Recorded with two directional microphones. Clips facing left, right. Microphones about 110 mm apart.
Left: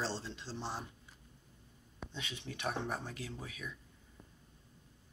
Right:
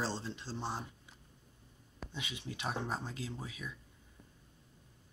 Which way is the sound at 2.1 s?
10° right (ahead or behind).